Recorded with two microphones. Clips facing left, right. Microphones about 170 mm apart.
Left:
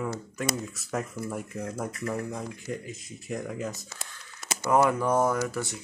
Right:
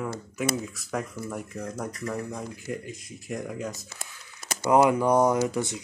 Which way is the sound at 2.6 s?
Centre (ahead or behind).